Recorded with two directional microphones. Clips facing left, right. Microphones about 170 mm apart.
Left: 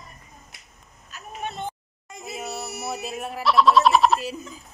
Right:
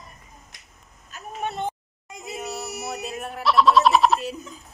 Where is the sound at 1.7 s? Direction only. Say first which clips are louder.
Right 3 dB; 15° right (ahead or behind).